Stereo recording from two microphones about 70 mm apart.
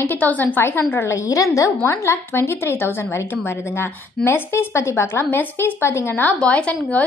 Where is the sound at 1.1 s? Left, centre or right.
Left.